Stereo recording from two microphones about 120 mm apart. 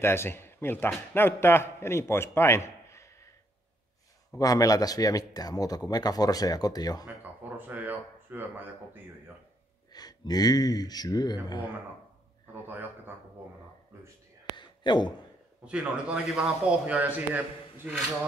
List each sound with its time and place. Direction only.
0.0 s speech: 20° left (ahead or behind)
4.4 s speech: 30° left (ahead or behind)
7.4 s speech: 15° right (ahead or behind)
9.9 s speech: 35° left (ahead or behind)
12.6 s speech: 15° right (ahead or behind)
14.6 s a sound: 40° left (ahead or behind)
15.6 s speech: 10° right (ahead or behind)